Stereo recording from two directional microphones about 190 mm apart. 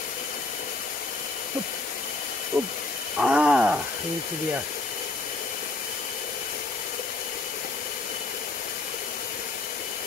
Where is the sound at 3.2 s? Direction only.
5° right (ahead or behind).